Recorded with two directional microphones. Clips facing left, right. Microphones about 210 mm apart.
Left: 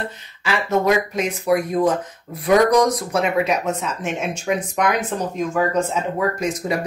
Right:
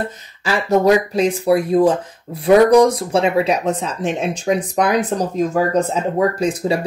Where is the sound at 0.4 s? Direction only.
40° right (ahead or behind).